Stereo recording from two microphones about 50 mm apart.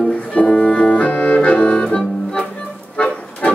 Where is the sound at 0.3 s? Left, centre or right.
Left.